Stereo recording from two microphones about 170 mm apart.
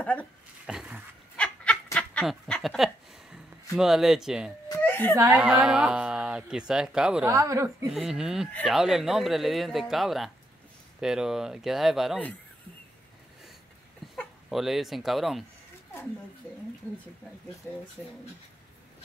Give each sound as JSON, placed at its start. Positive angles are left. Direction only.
{"t": 0.0, "sound": "speech", "side_deg": 10}
{"t": 0.7, "sound": "dog", "side_deg": -5}
{"t": 1.3, "sound": "goat", "side_deg": 5}
{"t": 2.0, "sound": "a sound", "side_deg": 5}
{"t": 3.7, "sound": "speech", "side_deg": 0}
{"t": 4.6, "sound": "a sound", "side_deg": 15}
{"t": 5.1, "sound": "speech", "side_deg": -15}
{"t": 5.4, "sound": "speech", "side_deg": -5}
{"t": 7.2, "sound": "speech", "side_deg": -20}
{"t": 7.9, "sound": "speech", "side_deg": 0}
{"t": 14.1, "sound": "speech", "side_deg": 0}